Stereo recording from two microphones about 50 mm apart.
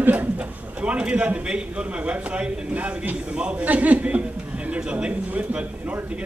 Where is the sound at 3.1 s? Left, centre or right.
Centre.